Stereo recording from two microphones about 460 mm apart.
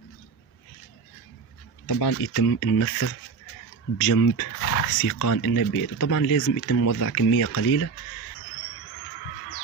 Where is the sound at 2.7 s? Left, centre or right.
Left.